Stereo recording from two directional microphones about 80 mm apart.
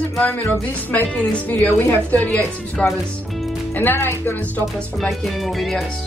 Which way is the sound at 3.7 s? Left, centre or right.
Left.